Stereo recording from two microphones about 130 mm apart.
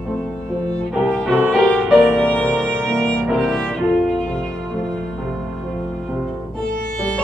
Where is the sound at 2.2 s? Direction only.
10° left (ahead or behind).